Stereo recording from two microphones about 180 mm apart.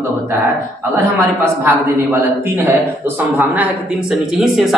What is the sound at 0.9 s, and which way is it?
Speech, 15° right (ahead or behind).